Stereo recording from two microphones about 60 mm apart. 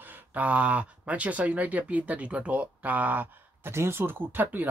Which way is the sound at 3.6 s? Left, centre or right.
Right.